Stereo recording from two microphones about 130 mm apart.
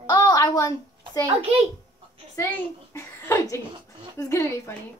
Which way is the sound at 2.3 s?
20° left (ahead or behind).